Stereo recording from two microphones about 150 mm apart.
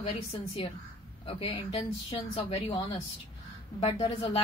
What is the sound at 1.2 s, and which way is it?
Speech, 40° left (ahead or behind).